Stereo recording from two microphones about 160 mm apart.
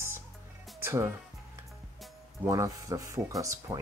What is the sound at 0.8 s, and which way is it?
Speech, 15° right (ahead or behind).